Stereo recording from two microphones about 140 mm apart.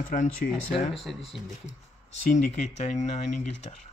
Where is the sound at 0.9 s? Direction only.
Centre (ahead or behind).